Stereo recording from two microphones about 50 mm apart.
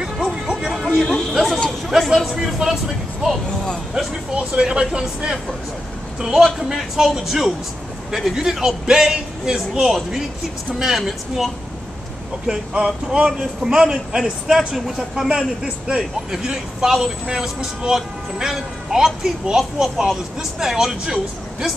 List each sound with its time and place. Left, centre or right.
0.0 s music: centre
1.0 s chatter: centre
1.9 s a man's voice: centre
4.4 s a man's voice: centre
12.4 s a man's voice: centre